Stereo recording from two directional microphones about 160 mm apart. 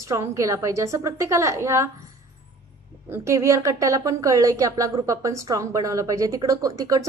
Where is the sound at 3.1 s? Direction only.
15° right (ahead or behind).